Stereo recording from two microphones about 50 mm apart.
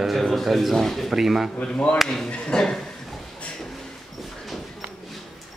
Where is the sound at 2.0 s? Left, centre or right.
Centre.